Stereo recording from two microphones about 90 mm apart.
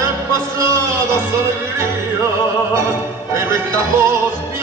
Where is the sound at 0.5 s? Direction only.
30° right (ahead or behind).